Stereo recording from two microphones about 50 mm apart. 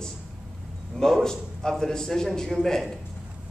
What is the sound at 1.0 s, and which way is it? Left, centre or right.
A man's voice, centre.